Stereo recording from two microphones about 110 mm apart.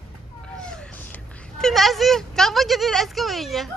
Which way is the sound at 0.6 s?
5° left (ahead or behind).